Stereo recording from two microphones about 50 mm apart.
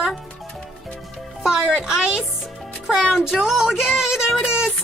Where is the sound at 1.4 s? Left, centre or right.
Centre.